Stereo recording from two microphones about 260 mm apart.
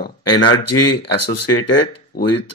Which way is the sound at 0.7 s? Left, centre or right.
Left.